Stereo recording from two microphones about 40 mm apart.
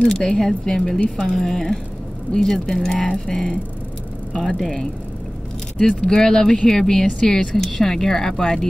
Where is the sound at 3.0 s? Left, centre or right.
Left.